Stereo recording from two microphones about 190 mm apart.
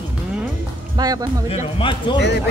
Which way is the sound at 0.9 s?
20° right (ahead or behind).